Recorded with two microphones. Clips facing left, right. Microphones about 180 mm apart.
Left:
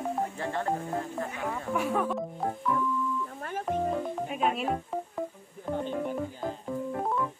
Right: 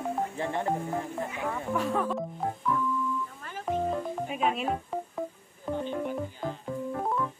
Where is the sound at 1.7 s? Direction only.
5° left (ahead or behind).